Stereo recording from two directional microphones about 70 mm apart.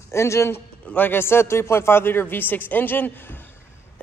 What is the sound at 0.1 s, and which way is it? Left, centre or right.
Speech, left.